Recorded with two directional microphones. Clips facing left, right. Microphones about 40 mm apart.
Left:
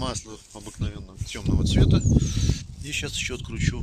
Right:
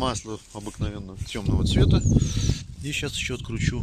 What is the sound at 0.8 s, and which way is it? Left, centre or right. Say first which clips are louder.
Speech: right 2 dB; centre.